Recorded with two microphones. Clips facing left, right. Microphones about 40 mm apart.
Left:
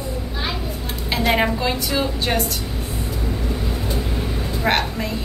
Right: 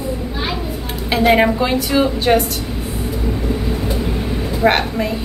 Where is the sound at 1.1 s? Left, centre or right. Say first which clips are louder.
Right 6 dB; centre.